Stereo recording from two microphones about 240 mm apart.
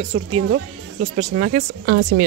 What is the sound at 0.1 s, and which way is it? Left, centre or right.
Speech, right.